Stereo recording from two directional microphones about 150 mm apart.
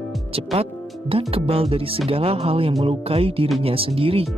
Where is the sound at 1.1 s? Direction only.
40° right (ahead or behind).